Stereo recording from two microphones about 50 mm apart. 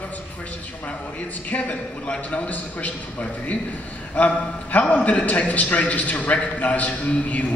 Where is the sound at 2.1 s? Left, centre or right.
Left.